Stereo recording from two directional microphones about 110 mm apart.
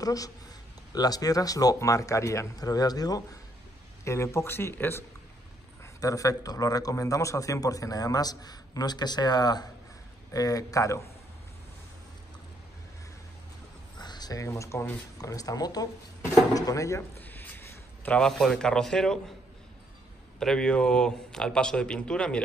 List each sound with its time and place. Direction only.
0.0 s a man's voice: 35° left (ahead or behind)
13.9 s speech: 40° left (ahead or behind)
17.2 s a sound: 15° left (ahead or behind)
20.3 s speech: 5° left (ahead or behind)